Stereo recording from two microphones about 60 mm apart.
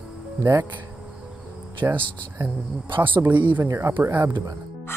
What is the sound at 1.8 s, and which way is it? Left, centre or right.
A man's voice, right.